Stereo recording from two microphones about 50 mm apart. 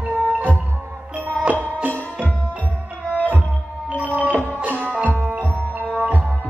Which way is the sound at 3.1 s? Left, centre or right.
Right.